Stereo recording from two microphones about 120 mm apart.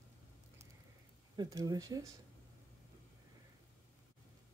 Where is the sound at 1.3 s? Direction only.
30° right (ahead or behind).